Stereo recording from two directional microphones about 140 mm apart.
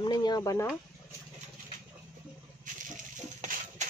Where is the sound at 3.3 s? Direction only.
60° right (ahead or behind).